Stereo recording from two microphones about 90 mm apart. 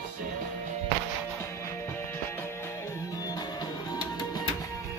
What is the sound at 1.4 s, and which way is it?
Music, 30° left (ahead or behind).